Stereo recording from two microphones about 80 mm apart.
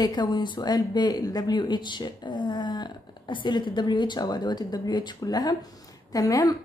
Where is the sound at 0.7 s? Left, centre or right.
Left.